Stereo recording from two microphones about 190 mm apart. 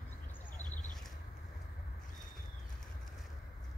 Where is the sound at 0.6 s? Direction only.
40° left (ahead or behind).